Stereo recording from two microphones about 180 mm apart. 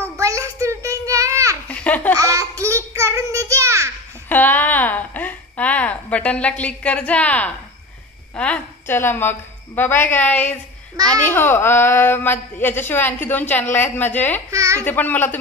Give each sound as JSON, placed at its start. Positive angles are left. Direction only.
{"t": 0.0, "sound": "child singing", "side_deg": -15}
{"t": 1.7, "sound": "baby laughter", "side_deg": 10}
{"t": 2.1, "sound": "a sound", "side_deg": -20}
{"t": 4.3, "sound": "a sound", "side_deg": 10}
{"t": 8.4, "sound": "a child's voice", "side_deg": 10}
{"t": 14.5, "sound": "speech", "side_deg": -15}
{"t": 14.8, "sound": "a child's voice", "side_deg": 10}